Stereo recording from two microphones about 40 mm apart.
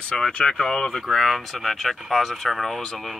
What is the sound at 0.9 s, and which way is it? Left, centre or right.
Speech, centre.